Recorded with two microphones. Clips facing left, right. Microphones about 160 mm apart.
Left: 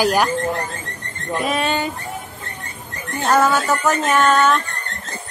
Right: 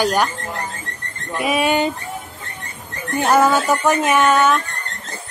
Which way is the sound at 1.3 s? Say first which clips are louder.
Right 3 dB; 10° right (ahead or behind).